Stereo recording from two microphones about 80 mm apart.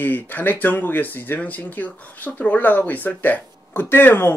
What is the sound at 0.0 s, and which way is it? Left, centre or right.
Speech, left.